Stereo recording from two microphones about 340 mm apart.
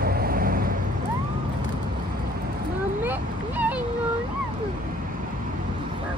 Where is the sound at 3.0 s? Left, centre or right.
Centre.